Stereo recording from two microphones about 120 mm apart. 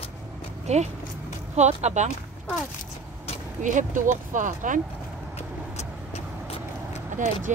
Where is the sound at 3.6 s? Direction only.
90° right.